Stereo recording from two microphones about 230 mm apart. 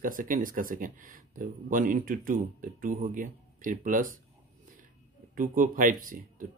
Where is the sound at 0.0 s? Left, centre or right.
Right.